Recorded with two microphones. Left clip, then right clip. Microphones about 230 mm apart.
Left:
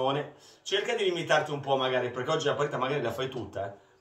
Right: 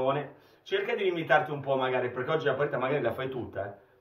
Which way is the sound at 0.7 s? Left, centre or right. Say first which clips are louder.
Left 1 dB; centre.